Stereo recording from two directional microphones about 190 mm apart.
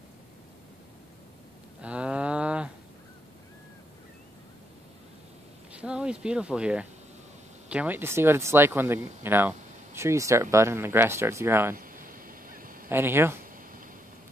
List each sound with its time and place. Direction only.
1.8 s cattle: 5° right (ahead or behind)
5.7 s speech: 5° right (ahead or behind)
11.7 s a sound: 45° right (ahead or behind)
12.9 s speech: 10° right (ahead or behind)